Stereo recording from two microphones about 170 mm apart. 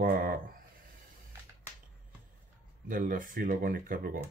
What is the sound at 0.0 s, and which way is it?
Speech, 60° right (ahead or behind).